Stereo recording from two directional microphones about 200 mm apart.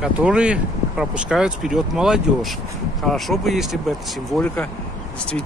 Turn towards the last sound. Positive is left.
turn(degrees=5)  # may be behind; listen again after turning